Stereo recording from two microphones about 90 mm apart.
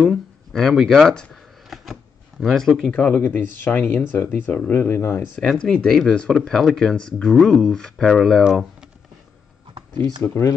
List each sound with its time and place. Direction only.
0.0 s a sound: centre (ahead or behind)
2.4 s speech: centre (ahead or behind)
2.9 s speech: 15° left (ahead or behind)
5.4 s speech: 10° left (ahead or behind)
10.2 s speech: 30° left (ahead or behind)